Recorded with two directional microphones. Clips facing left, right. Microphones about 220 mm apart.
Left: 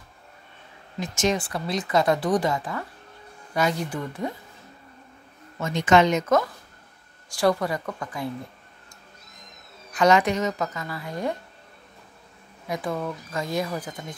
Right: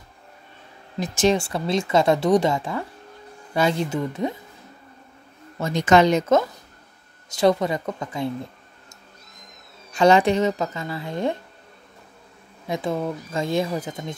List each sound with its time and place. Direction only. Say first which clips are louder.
0.9 s speech: right 5 dB; 35° right (ahead or behind)
5.6 s speech: right 2 dB; 40° right (ahead or behind)
9.9 s speech: right 3 dB; 30° right (ahead or behind)
12.6 s speech: right 3 dB; 25° right (ahead or behind)